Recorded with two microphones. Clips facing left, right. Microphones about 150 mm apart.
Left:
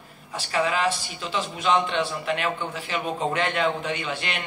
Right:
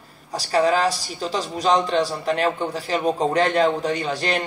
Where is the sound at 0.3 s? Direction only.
40° right (ahead or behind).